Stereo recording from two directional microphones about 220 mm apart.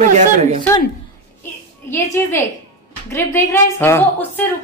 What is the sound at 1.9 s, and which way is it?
Speech, 10° left (ahead or behind).